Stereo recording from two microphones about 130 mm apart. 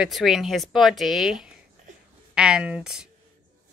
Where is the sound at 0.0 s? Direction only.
Centre (ahead or behind).